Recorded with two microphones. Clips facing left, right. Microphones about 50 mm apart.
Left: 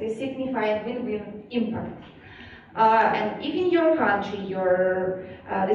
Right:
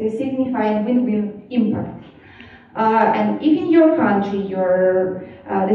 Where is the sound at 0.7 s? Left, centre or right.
Right.